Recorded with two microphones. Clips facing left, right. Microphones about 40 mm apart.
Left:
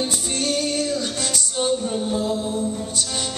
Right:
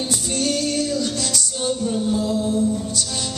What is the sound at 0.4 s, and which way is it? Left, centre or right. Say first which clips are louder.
Music: right 1 dB; left.